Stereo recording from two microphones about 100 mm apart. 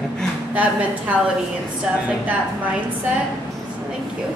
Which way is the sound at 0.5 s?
15° right (ahead or behind).